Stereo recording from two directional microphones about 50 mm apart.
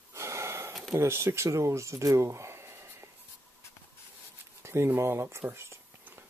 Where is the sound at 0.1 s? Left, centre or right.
Right.